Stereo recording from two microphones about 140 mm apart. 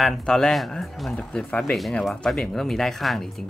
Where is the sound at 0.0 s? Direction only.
5° left (ahead or behind).